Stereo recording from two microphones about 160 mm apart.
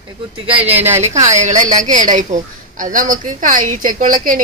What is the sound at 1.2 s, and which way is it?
A woman's voice, 45° right (ahead or behind).